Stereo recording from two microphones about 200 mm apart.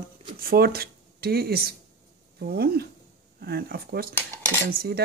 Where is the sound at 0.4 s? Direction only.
50° right (ahead or behind).